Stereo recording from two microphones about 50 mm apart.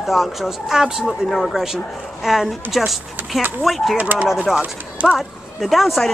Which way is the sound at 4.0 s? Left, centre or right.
Right.